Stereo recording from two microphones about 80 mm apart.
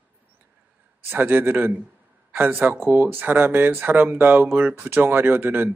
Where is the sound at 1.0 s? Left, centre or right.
Right.